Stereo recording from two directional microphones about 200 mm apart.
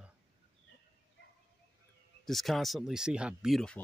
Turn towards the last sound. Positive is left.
turn(degrees=0)  # may be behind; listen again after turning